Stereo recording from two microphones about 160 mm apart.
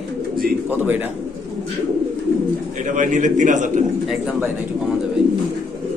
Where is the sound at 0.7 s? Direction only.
10° right (ahead or behind).